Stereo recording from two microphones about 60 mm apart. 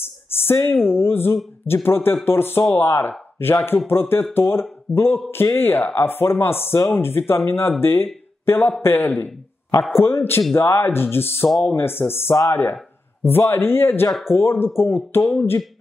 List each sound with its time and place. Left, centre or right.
0.0 s a sound: left
0.8 s a man's voice: left
11.4 s speech: centre
11.7 s a man's voice: left